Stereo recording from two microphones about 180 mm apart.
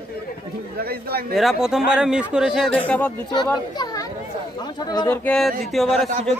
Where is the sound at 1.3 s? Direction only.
Centre (ahead or behind).